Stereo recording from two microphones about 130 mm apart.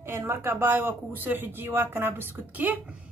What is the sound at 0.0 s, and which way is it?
A woman's voice, 20° right (ahead or behind).